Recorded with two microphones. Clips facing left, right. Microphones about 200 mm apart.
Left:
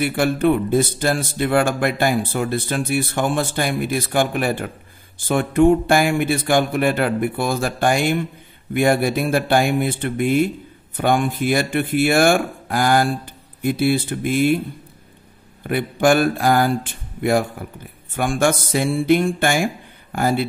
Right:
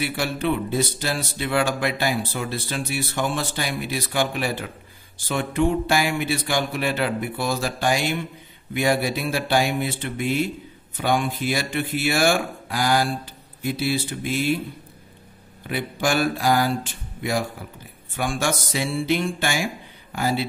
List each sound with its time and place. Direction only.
0.0 s speech: 50° left (ahead or behind)
15.6 s speech: 55° left (ahead or behind)